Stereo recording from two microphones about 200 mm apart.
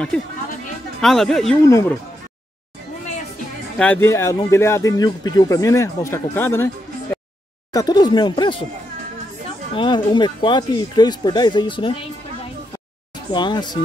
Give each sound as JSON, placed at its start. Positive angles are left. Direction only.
{"t": 1.0, "sound": "speech", "side_deg": 0}
{"t": 1.6, "sound": "speech", "side_deg": 15}
{"t": 3.7, "sound": "speech", "side_deg": 5}
{"t": 9.8, "sound": "speech", "side_deg": 25}
{"t": 13.3, "sound": "speech", "side_deg": 20}